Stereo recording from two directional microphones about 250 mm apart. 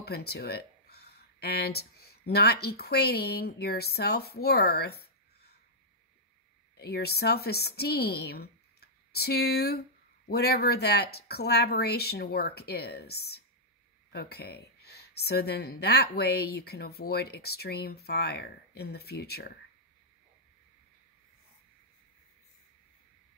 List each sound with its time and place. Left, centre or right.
0.0 s speech: left
6.8 s speech: left